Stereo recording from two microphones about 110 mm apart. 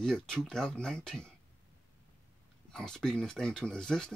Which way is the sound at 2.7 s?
5° left (ahead or behind).